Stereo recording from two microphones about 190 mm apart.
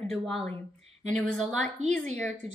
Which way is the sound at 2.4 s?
35° right (ahead or behind).